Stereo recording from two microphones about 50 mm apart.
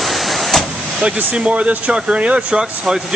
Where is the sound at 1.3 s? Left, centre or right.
Right.